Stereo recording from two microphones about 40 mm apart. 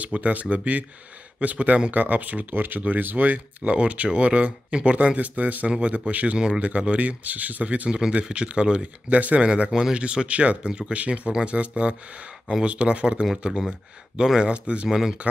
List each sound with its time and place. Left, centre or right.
0.0 s speech: right
2.5 s speech: right
3.7 s speech: right
5.7 s speech: right
9.7 s speech: centre
9.9 s speech: right
14.4 s speech: right
14.9 s speech: centre